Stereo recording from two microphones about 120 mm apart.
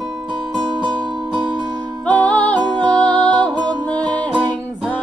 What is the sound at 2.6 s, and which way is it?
Music, 35° right (ahead or behind).